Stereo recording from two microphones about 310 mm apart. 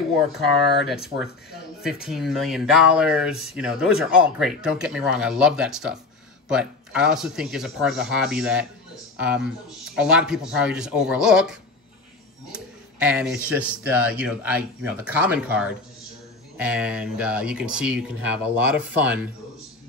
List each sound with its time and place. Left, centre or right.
0.4 s speech: centre
12.5 s speech: centre